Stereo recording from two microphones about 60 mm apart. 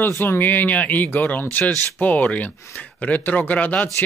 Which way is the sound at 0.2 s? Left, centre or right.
Left.